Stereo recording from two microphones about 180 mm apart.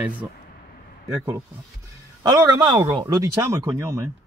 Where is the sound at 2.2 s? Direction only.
20° right (ahead or behind).